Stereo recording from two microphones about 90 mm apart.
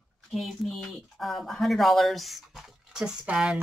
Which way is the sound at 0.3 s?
Centre (ahead or behind).